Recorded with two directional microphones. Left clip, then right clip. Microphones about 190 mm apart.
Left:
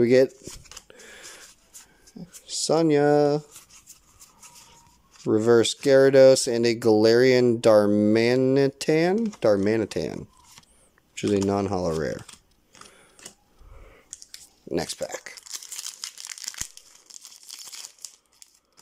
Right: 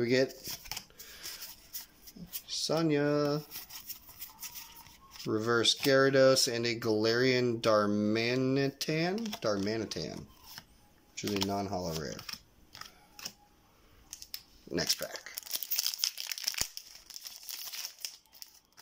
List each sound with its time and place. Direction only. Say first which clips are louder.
0.0 s speech: left 11 dB; 35° left (ahead or behind)
0.8 s a sound: left 6 dB; 35° left (ahead or behind)
2.4 s speech: left 9 dB; 30° left (ahead or behind)
5.3 s speech: left 9 dB; 35° left (ahead or behind)
11.5 s speech: left 10 dB; 50° left (ahead or behind)
12.3 s typing: right 5 dB; 10° left (ahead or behind)
14.7 s speech: left 5 dB; 25° left (ahead or behind)
16.0 s crumpling: right 2 dB; centre (ahead or behind)